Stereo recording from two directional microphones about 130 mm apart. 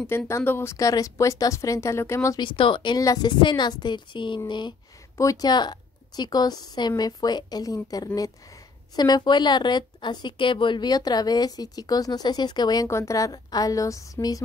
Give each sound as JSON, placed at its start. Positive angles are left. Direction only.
{"t": 0.3, "sound": "speech", "side_deg": 20}
{"t": 2.4, "sound": "speech", "side_deg": 40}
{"t": 5.1, "sound": "speech", "side_deg": 25}